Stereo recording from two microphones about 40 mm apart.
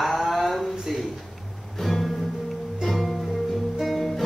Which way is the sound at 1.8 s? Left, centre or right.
Centre.